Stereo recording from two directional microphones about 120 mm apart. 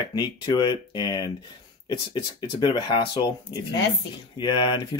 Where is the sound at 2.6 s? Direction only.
40° left (ahead or behind).